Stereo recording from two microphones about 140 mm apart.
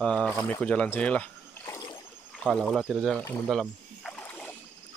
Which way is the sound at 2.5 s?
5° left (ahead or behind).